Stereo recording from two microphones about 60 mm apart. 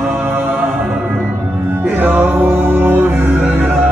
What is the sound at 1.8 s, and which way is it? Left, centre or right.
Music, right.